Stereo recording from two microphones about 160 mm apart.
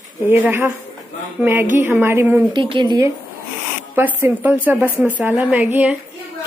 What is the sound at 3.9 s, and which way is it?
A woman's voice, 10° right (ahead or behind).